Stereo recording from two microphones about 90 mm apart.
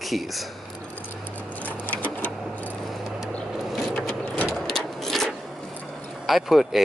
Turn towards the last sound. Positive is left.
turn(degrees=0)  # may be behind; listen again after turning